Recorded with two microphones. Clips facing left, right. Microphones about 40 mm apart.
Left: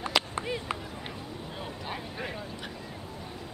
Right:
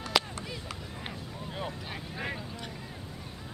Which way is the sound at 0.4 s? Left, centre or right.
Left.